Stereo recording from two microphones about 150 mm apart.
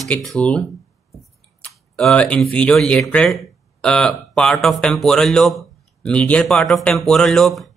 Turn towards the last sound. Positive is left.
turn(degrees=0)  # may be behind; listen again after turning